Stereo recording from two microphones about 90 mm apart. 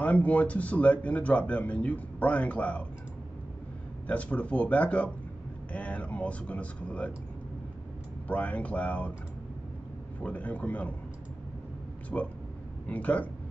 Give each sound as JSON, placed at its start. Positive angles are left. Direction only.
{"t": 0.0, "sound": "speech", "side_deg": 15}
{"t": 4.1, "sound": "speech", "side_deg": 15}
{"t": 8.3, "sound": "speech", "side_deg": 15}
{"t": 10.2, "sound": "speech", "side_deg": 15}
{"t": 12.1, "sound": "speech", "side_deg": 15}